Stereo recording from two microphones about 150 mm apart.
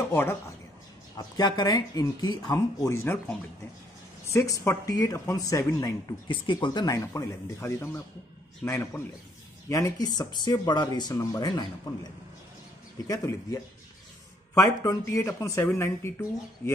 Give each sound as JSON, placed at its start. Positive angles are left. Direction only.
{"t": 0.1, "sound": "speech", "side_deg": 15}
{"t": 1.1, "sound": "speech", "side_deg": 25}
{"t": 4.3, "sound": "speech", "side_deg": 20}
{"t": 6.2, "sound": "a man's voice", "side_deg": 35}